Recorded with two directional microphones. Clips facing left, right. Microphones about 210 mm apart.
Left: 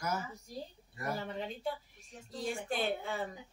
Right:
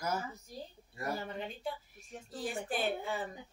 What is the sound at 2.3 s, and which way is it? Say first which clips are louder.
Speech: left 1 dB; 5° right (ahead or behind).